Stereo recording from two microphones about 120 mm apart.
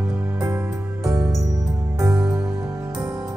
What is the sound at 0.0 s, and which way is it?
Music, 10° right (ahead or behind).